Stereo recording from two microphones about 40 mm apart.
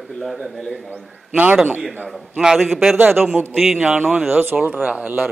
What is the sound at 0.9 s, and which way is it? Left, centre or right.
Speech, right.